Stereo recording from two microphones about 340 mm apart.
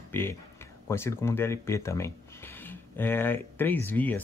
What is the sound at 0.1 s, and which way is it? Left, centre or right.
Speech, centre.